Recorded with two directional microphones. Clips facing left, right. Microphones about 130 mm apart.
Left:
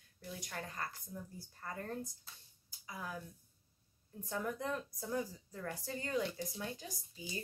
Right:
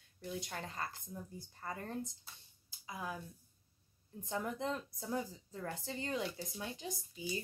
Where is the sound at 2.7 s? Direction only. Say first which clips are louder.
Right 2 dB; 20° right (ahead or behind).